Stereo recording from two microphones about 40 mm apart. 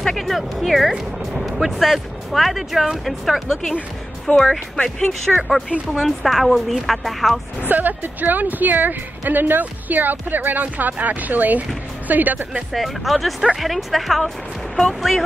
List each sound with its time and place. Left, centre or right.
0.0 s speech: centre
4.3 s speech: left
4.8 s speech: centre
7.6 s speech: right
12.7 s speech: centre